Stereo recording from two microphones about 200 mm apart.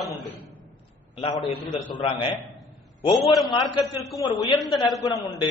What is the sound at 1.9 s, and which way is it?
Speech, 25° left (ahead or behind).